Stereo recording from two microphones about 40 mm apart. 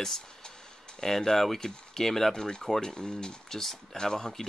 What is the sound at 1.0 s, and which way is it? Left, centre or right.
Speech, centre.